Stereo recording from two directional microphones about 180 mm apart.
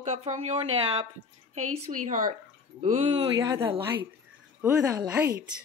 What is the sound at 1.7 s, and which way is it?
Speech, 45° right (ahead or behind).